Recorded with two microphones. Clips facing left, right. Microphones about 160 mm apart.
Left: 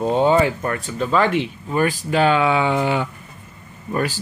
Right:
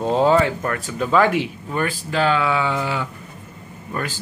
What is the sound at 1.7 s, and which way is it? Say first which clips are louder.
Speech: left 5 dB; 15° left (ahead or behind).